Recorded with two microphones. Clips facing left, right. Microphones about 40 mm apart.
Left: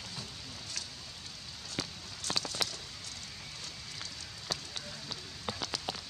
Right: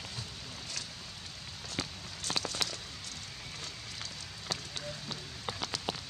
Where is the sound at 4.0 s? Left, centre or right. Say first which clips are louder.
Right 1 dB; centre.